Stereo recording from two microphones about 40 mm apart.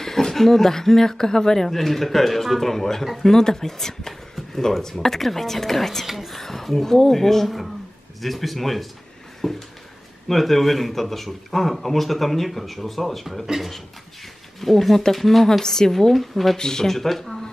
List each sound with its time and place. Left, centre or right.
0.0 s a man's voice: centre
16.5 s speech: centre